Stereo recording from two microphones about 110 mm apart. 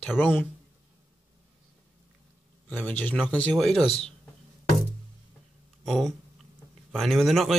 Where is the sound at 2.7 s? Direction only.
15° left (ahead or behind).